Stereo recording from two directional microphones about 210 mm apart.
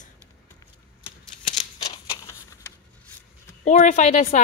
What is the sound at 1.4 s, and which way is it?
Shuffling cards, 25° left (ahead or behind).